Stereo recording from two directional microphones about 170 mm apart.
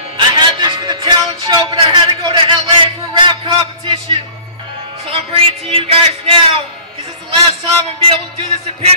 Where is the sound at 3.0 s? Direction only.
25° right (ahead or behind).